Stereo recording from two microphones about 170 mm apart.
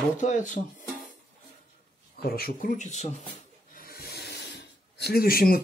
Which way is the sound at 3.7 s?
60° left (ahead or behind).